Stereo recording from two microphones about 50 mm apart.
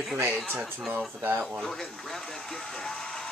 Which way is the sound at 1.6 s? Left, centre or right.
Centre.